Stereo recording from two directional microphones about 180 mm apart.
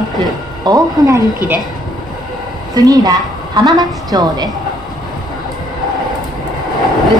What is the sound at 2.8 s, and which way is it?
A woman's voice, 20° right (ahead or behind).